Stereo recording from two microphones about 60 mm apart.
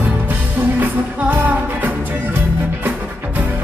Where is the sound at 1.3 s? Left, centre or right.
Right.